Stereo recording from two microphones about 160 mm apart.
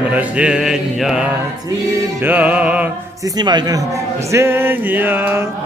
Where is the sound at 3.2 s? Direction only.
25° right (ahead or behind).